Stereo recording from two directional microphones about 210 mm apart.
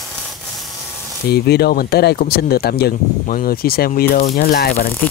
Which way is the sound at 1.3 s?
50° left (ahead or behind).